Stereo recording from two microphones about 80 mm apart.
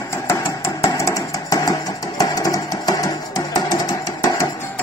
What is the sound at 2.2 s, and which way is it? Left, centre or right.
Music, left.